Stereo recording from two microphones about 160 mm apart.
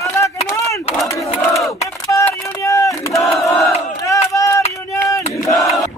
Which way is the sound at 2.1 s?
20° left (ahead or behind).